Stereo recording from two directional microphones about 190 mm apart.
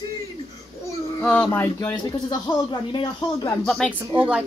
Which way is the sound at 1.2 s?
10° left (ahead or behind).